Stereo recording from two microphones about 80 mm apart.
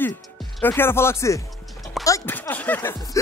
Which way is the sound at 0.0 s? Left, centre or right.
Left.